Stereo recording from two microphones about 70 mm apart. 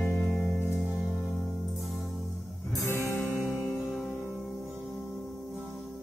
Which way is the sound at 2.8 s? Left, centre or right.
Left.